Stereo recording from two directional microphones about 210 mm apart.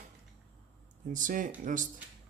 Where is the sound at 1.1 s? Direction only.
40° right (ahead or behind).